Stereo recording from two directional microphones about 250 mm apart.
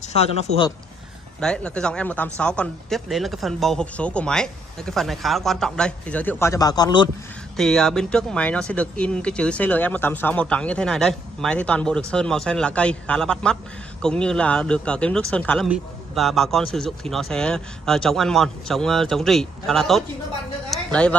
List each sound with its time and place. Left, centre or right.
0.1 s a man's voice: left
1.4 s speech: centre
7.5 s a woman's voice: centre